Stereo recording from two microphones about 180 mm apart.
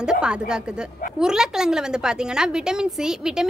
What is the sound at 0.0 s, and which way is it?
A woman's voice, 5° right (ahead or behind).